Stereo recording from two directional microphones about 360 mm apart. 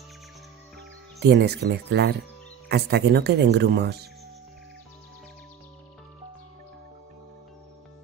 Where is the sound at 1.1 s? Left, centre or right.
Right.